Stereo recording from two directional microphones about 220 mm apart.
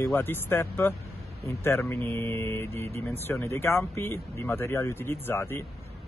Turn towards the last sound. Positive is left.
turn(degrees=10)  # may be behind; listen again after turning